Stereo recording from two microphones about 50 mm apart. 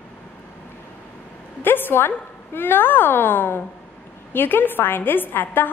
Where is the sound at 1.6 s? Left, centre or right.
Left.